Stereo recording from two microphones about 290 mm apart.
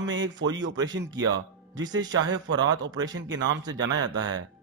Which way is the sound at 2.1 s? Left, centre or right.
Right.